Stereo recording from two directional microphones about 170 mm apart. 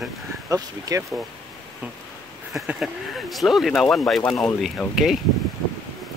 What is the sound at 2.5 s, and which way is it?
Speech, centre (ahead or behind).